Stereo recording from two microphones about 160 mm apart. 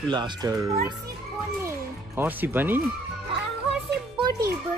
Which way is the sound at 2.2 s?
10° right (ahead or behind).